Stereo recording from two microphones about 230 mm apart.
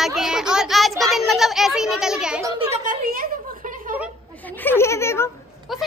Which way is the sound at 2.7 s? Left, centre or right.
Right.